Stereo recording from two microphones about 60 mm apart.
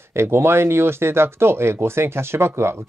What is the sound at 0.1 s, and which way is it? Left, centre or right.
Speech, right.